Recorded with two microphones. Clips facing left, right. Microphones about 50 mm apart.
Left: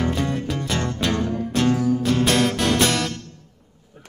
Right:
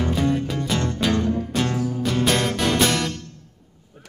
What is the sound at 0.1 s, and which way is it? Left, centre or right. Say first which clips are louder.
Music: right 2 dB; centre.